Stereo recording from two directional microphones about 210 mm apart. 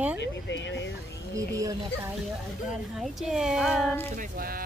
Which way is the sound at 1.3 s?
15° right (ahead or behind).